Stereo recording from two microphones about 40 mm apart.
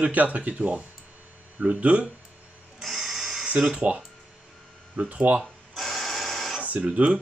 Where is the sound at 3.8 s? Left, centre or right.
Right.